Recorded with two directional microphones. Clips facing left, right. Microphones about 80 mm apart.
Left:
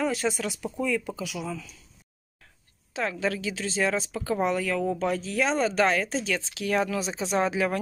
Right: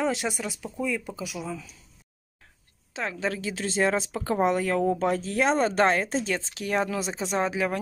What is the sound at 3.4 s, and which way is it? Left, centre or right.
Speech, right.